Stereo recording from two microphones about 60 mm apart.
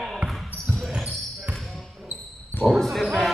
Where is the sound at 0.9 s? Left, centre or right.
Right.